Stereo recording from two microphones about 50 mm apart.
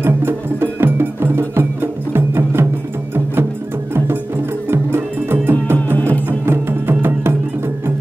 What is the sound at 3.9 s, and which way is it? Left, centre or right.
Music, right.